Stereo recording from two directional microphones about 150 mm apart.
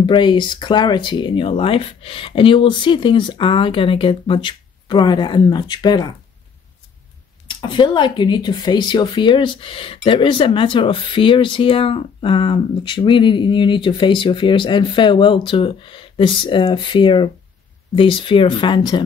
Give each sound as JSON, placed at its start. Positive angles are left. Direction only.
{"t": 0.0, "sound": "speech", "side_deg": 30}
{"t": 7.4, "sound": "speech", "side_deg": 30}